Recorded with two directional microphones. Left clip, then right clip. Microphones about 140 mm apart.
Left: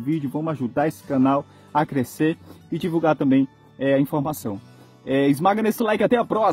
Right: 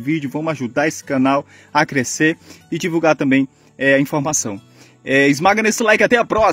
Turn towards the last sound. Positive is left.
turn(degrees=-5)  # may be behind; listen again after turning